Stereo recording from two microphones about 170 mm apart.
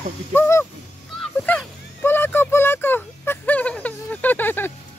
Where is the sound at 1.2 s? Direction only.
5° left (ahead or behind).